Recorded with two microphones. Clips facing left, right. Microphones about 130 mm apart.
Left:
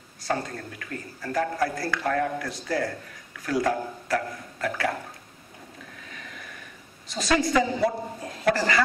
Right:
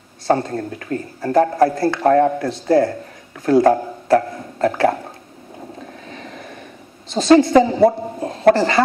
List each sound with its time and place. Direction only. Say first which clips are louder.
0.4 s a man's voice: right 10 dB; 30° right (ahead or behind)
3.7 s music: right 11 dB; 30° right (ahead or behind)
5.8 s a sound: right 9 dB; 30° right (ahead or behind)
7.1 s speech: right 12 dB; 30° right (ahead or behind)
7.5 s a woman's voice: right 10 dB; 45° right (ahead or behind)
8.2 s speech: right 11 dB; 30° right (ahead or behind)